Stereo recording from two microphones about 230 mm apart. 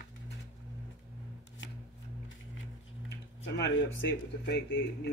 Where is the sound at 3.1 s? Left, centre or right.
Left.